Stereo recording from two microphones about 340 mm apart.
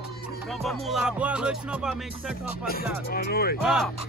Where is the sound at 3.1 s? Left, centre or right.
Left.